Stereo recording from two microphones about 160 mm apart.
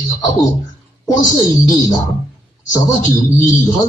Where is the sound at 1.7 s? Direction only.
25° left (ahead or behind).